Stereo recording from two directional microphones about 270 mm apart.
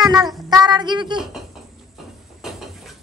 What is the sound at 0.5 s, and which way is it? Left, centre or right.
Speech, centre.